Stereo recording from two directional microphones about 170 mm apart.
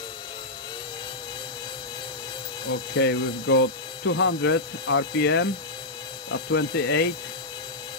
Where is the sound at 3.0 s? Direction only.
90° left.